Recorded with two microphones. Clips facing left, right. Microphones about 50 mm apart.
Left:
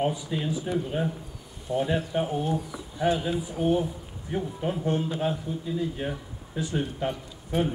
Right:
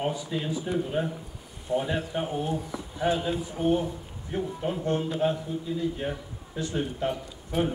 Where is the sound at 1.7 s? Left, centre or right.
Right.